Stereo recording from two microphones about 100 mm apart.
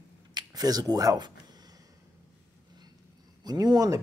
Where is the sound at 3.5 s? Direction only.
40° right (ahead or behind).